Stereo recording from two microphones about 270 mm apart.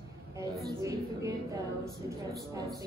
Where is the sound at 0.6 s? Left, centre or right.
Centre.